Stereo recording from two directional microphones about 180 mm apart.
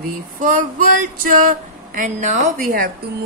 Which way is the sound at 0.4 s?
45° right (ahead or behind).